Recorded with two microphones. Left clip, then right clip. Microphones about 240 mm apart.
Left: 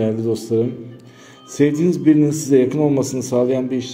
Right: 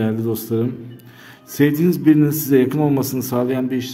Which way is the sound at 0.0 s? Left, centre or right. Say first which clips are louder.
Left 2 dB; centre.